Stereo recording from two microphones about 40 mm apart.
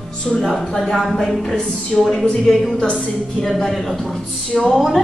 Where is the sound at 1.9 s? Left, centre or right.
Centre.